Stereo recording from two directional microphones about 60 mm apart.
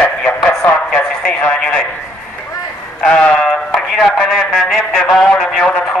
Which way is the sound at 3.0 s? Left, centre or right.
Centre.